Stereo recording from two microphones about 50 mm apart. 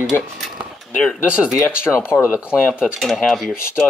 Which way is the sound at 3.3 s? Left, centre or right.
Centre.